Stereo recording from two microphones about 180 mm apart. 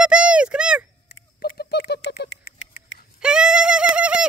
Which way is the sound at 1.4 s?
65° left (ahead or behind).